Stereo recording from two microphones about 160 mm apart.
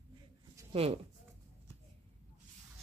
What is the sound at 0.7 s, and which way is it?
Speech, 35° right (ahead or behind).